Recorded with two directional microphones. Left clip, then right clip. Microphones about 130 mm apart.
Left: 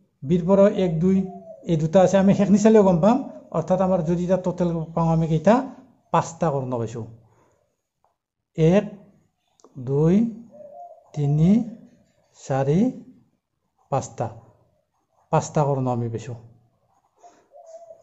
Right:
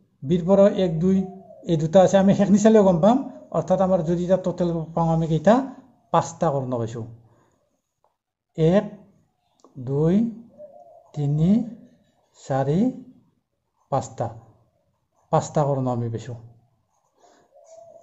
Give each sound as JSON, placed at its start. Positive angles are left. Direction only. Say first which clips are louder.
{"t": 0.3, "sound": "a man's voice", "louder": "even", "side_deg": 10}
{"t": 8.5, "sound": "a man's voice", "louder": "even", "side_deg": 15}